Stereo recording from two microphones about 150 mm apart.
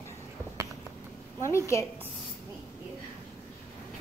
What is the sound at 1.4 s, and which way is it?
Speech, 20° left (ahead or behind).